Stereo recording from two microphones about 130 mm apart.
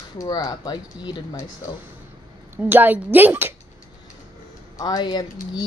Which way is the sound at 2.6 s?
15° right (ahead or behind).